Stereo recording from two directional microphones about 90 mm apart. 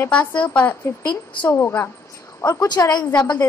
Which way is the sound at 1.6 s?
25° left (ahead or behind).